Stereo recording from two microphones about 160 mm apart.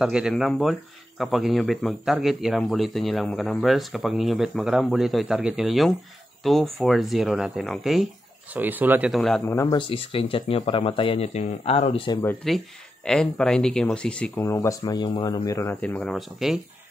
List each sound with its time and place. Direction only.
0.0 s speech: 5° right (ahead or behind)
9.1 s speech: 5° left (ahead or behind)
9.4 s speech: 20° left (ahead or behind)
9.8 s speech: 35° left (ahead or behind)
12.4 s speech: centre (ahead or behind)
14.3 s speech: 20° left (ahead or behind)
15.7 s speech: 10° left (ahead or behind)